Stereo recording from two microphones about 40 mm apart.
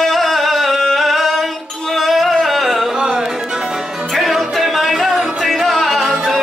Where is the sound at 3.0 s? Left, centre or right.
Centre.